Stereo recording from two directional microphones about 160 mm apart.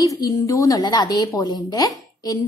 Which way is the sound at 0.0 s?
20° left (ahead or behind).